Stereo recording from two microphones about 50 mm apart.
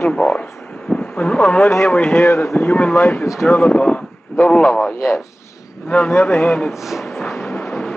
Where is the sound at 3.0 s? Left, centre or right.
Left.